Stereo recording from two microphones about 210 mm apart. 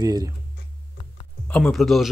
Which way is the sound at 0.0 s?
20° right (ahead or behind).